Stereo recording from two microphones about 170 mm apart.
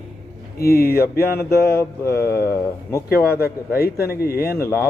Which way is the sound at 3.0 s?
65° left (ahead or behind).